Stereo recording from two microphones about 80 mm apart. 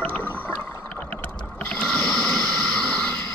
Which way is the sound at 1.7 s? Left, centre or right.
Centre.